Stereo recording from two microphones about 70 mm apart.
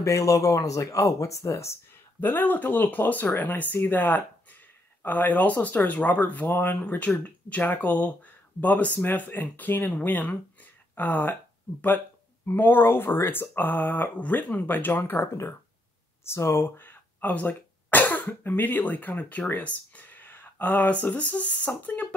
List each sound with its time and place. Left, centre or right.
0.0 s speech: left
2.1 s speech: left
12.4 s speech: left